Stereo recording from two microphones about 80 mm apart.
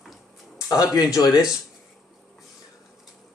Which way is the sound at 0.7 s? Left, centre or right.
Left.